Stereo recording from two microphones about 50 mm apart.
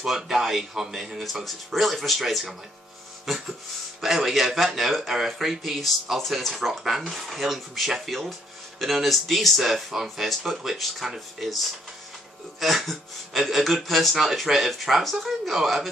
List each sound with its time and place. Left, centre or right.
0.0 s speech: centre
4.0 s speech: centre